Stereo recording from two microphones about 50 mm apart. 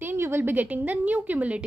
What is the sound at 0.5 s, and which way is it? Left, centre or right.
A woman's voice, right.